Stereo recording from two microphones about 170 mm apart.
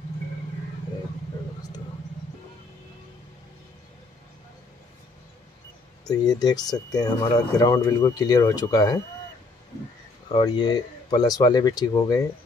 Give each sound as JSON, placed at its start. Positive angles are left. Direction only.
{"t": 6.0, "sound": "speech", "side_deg": 20}
{"t": 10.3, "sound": "speech", "side_deg": 25}